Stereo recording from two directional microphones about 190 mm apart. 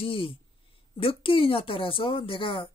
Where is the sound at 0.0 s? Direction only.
30° left (ahead or behind).